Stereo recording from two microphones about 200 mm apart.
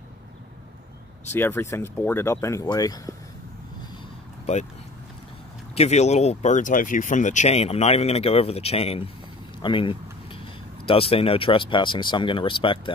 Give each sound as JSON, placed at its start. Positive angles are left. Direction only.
{"t": 1.3, "sound": "speech", "side_deg": 10}
{"t": 5.8, "sound": "speech", "side_deg": 35}